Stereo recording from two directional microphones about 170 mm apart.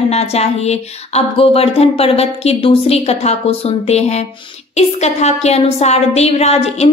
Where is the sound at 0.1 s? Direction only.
40° left (ahead or behind).